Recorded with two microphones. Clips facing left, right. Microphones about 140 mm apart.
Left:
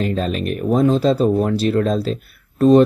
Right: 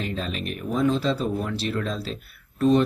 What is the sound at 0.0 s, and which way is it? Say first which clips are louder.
Speech: left 9 dB; 45° left (ahead or behind).